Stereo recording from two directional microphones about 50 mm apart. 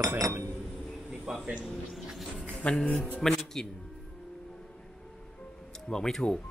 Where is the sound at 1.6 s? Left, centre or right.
Centre.